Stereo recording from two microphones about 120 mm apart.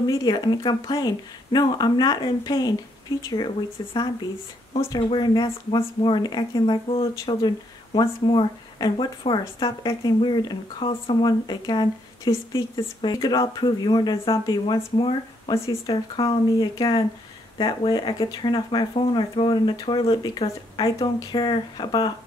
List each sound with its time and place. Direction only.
0.0 s speech: 35° left (ahead or behind)
15.5 s speech: 25° left (ahead or behind)
16.2 s speech: 55° left (ahead or behind)
16.5 s speech: 30° left (ahead or behind)